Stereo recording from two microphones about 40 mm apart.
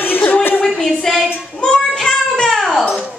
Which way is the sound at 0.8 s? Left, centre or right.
Centre.